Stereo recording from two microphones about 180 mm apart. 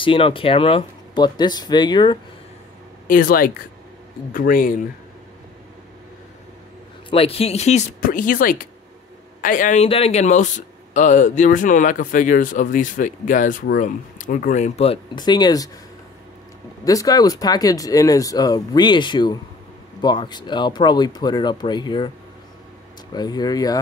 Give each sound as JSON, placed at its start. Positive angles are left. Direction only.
{"t": 0.0, "sound": "speech", "side_deg": 30}
{"t": 3.1, "sound": "speech", "side_deg": 50}
{"t": 7.1, "sound": "speech", "side_deg": 30}
{"t": 9.8, "sound": "speech", "side_deg": 35}
{"t": 15.1, "sound": "speech", "side_deg": 25}
{"t": 16.8, "sound": "speech", "side_deg": 20}
{"t": 23.1, "sound": "speech", "side_deg": 20}